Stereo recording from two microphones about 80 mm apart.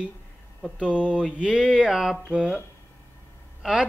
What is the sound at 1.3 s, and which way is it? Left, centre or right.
Speech, centre.